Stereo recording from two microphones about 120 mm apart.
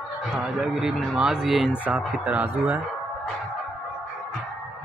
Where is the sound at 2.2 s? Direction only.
15° right (ahead or behind).